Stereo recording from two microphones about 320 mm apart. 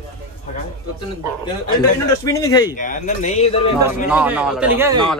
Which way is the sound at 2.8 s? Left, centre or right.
Left.